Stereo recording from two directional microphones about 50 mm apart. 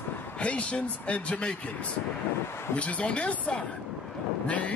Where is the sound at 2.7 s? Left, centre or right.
Left.